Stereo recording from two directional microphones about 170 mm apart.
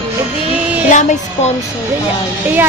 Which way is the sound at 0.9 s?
45° left (ahead or behind).